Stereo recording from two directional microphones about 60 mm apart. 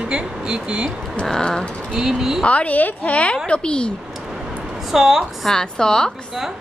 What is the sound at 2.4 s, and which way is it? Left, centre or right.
A woman's voice, left.